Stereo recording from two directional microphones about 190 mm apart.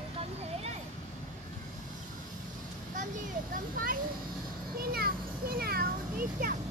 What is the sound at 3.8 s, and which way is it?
Speech, 45° right (ahead or behind).